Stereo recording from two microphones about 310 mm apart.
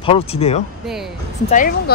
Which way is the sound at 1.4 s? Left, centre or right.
Left.